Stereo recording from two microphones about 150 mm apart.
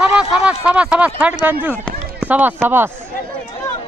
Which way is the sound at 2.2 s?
10° right (ahead or behind).